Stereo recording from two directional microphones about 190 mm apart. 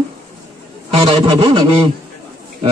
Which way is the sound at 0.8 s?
25° right (ahead or behind).